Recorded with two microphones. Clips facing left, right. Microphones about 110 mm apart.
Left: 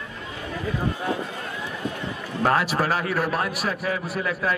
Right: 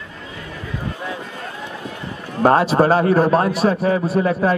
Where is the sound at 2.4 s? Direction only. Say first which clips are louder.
Right 8 dB; 30° right (ahead or behind).